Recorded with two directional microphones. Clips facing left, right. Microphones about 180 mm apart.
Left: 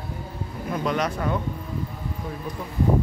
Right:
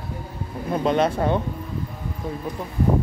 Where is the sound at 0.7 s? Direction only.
25° right (ahead or behind).